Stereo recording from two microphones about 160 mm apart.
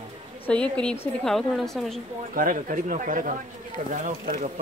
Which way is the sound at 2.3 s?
60° right (ahead or behind).